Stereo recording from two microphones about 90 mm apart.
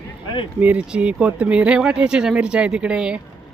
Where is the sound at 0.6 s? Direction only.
15° right (ahead or behind).